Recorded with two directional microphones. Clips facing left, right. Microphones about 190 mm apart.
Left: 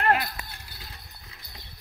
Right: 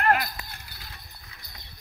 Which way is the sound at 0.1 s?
30° left (ahead or behind).